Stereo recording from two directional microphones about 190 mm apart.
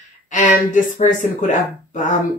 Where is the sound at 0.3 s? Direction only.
40° left (ahead or behind).